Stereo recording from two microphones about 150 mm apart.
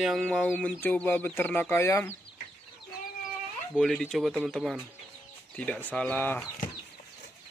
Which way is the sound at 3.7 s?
5° left (ahead or behind).